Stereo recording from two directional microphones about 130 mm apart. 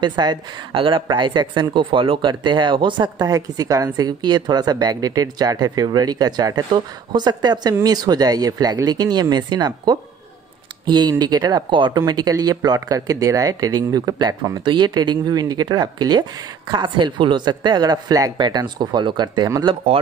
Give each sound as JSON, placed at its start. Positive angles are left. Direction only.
{"t": 0.0, "sound": "speech", "side_deg": -35}
{"t": 19.7, "sound": "speech", "side_deg": -45}